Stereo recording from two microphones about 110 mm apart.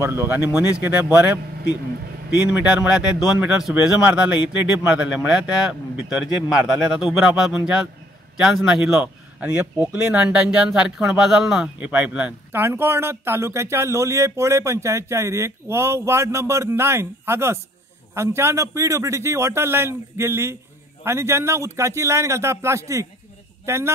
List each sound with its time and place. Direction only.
0.0 s speech: 20° right (ahead or behind)